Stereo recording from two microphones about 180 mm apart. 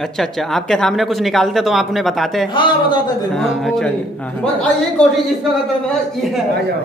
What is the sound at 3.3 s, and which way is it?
Speech, centre (ahead or behind).